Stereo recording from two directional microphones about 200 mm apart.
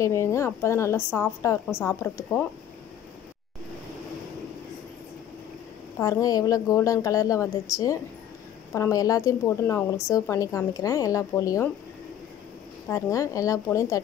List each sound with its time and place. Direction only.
0.0 s a woman's voice: 15° left (ahead or behind)
5.9 s a woman's voice: 15° left (ahead or behind)
12.8 s a woman's voice: 15° left (ahead or behind)